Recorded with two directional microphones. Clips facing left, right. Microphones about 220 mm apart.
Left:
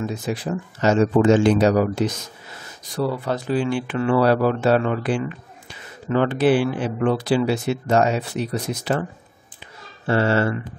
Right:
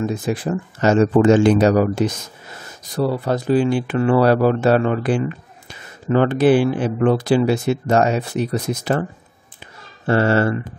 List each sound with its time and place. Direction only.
0.0 s speech: 50° right (ahead or behind)
3.3 s speech: 40° right (ahead or behind)
10.0 s speech: 45° right (ahead or behind)